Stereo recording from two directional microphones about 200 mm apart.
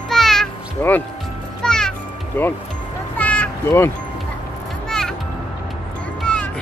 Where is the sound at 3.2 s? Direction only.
5° left (ahead or behind).